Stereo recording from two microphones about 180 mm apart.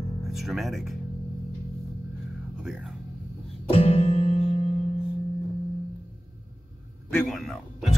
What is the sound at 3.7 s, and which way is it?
Music, 35° left (ahead or behind).